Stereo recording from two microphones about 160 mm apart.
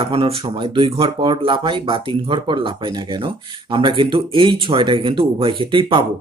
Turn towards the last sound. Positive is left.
turn(degrees=-30)  # may be behind; listen again after turning